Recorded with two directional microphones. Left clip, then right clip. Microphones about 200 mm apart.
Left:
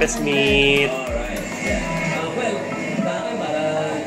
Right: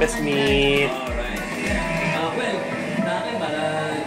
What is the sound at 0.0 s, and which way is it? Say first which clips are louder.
Music: left 2 dB; 5° right (ahead or behind).